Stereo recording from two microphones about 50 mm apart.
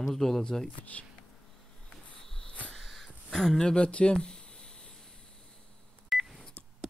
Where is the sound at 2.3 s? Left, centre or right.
Centre.